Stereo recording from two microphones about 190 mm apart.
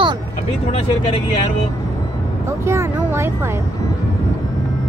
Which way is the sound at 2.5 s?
15° right (ahead or behind).